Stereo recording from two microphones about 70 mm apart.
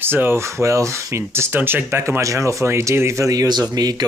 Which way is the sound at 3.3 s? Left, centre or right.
Right.